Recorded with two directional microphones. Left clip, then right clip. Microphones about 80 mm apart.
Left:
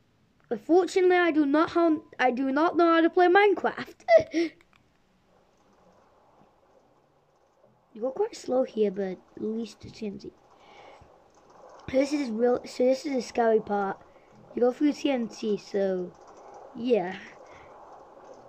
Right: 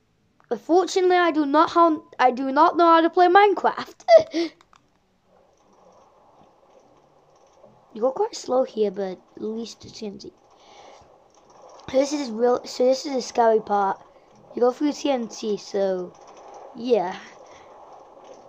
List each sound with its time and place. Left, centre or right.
0.5 s a woman's voice: left
7.9 s a woman's voice: left
16.0 s typing: centre
16.7 s a woman's voice: left
17.4 s a sound: centre